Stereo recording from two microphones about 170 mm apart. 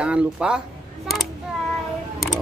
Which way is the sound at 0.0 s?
5° right (ahead or behind).